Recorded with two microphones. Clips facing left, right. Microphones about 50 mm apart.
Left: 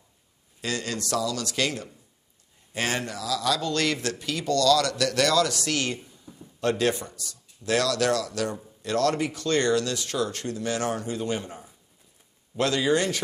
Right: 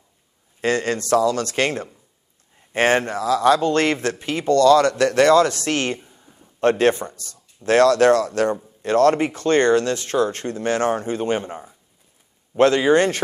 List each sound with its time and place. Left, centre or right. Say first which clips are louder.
0.6 s speech: right 9 dB; right
6.0 s a sound: left 2 dB; right
6.6 s speech: right 8 dB; right